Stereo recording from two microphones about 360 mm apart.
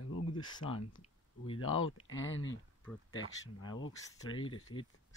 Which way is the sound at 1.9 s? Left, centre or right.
Left.